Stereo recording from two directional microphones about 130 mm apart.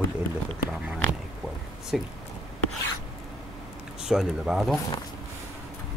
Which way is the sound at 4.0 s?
5° right (ahead or behind).